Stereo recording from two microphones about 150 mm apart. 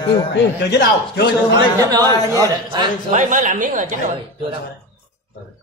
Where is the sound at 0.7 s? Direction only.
90° left.